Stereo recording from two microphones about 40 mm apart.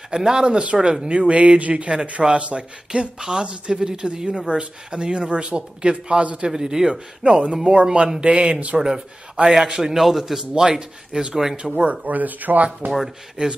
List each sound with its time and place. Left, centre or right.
0.1 s speech: centre
6.9 s speech: right
8.7 s speech: centre
11.9 s speech: right
12.9 s speech: centre